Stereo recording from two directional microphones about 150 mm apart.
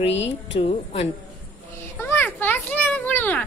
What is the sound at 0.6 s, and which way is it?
Speech, 45° left (ahead or behind).